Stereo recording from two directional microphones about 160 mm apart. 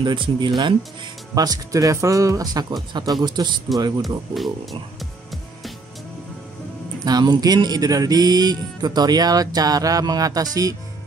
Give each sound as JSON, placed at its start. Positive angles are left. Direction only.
{"t": 0.0, "sound": "speech", "side_deg": -30}
{"t": 3.7, "sound": "speech", "side_deg": 0}
{"t": 7.1, "sound": "speech", "side_deg": -25}